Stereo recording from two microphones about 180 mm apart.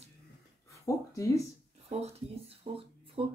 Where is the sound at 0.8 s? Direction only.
15° left (ahead or behind).